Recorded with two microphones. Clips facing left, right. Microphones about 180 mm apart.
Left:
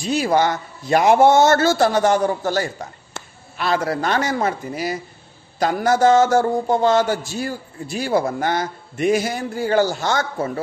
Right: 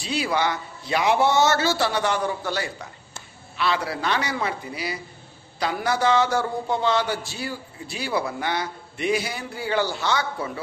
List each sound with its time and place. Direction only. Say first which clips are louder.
0.0 s a man's voice: left 6 dB; 45° left (ahead or behind)